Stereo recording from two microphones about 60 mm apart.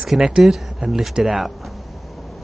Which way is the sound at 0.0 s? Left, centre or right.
Centre.